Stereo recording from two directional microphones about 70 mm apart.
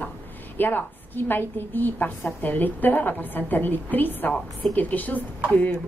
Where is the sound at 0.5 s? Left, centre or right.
Left.